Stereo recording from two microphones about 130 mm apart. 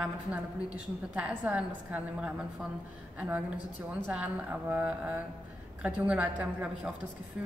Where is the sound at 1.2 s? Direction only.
10° right (ahead or behind).